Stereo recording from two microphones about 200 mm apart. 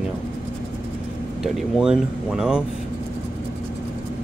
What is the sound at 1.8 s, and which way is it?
Speech, 5° right (ahead or behind).